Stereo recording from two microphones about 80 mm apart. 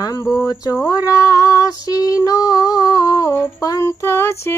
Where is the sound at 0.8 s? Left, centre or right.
Left.